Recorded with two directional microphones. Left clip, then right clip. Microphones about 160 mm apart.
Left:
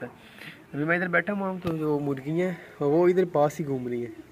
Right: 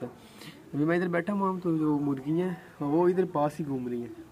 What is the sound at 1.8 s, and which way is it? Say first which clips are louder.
Speech: left 1 dB; 30° left (ahead or behind).